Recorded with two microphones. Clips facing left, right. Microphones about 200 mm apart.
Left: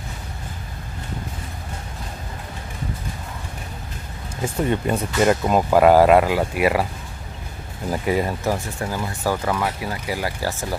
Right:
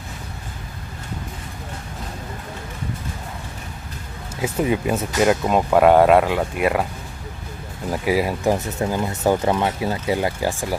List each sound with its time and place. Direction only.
4.4 s speech: 5° right (ahead or behind)
7.9 s speech: 5° right (ahead or behind)
8.5 s speech: 20° right (ahead or behind)